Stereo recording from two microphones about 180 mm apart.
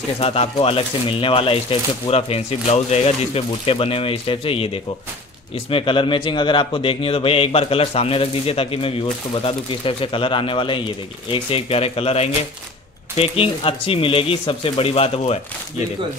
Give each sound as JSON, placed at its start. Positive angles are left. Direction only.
{"t": 0.2, "sound": "speech", "side_deg": 35}
{"t": 5.7, "sound": "speech", "side_deg": 30}